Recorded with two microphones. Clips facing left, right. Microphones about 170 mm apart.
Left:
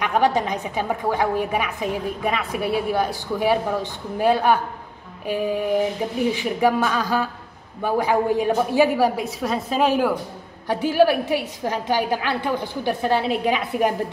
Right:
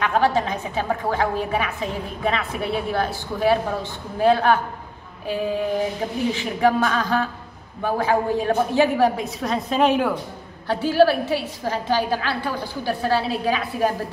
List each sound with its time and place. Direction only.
0.0 s a woman's voice: 15° left (ahead or behind)
5.2 s a sound: 15° left (ahead or behind)
6.3 s a woman's voice: 10° left (ahead or behind)
10.7 s a woman's voice: 15° left (ahead or behind)